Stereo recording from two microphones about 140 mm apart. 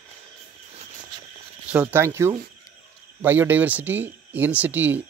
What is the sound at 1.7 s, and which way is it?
Speech, 15° right (ahead or behind).